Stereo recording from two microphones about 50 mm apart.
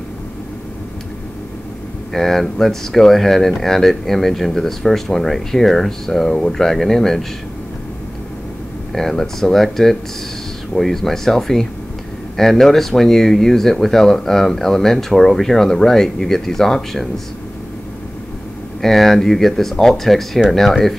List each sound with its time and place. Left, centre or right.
2.1 s speech: centre
8.9 s speech: centre
18.8 s speech: centre